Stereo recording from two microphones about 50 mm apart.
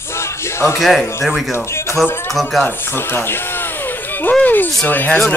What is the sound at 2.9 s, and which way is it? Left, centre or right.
Speech, left.